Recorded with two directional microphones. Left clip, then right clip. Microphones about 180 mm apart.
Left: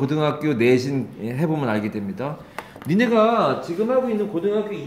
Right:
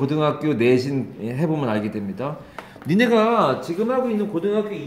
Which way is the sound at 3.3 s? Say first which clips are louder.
Right 1 dB; 50° right (ahead or behind).